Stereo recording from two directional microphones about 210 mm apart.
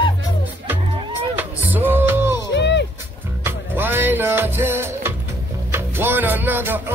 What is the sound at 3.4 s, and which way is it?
Music, 10° right (ahead or behind).